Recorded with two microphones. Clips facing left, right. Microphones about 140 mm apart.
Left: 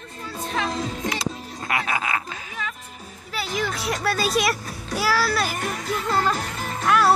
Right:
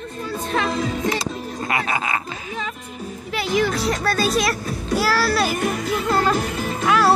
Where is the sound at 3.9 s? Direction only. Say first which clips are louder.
Right 3 dB; 5° left (ahead or behind).